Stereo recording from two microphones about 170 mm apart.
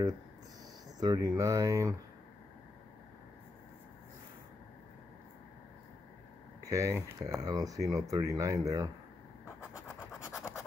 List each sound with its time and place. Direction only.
0.9 s speech: 20° right (ahead or behind)
6.6 s speech: 20° right (ahead or behind)
9.9 s scratch: 5° right (ahead or behind)